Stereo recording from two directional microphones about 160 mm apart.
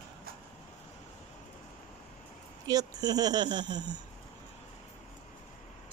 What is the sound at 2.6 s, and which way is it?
Speech, 25° right (ahead or behind).